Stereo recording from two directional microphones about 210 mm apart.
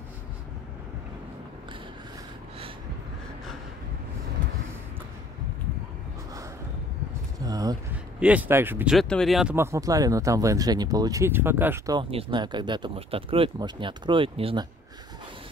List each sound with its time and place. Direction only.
7.4 s a sound: 15° right (ahead or behind)
8.2 s speech: 5° right (ahead or behind)
8.9 s speech: centre (ahead or behind); by 14.7 s 25° right (ahead or behind)